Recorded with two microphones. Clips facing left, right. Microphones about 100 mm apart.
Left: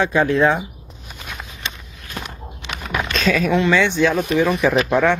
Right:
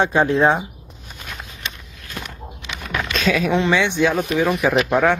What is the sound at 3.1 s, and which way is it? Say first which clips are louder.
Speech: left 1 dB; 15° right (ahead or behind).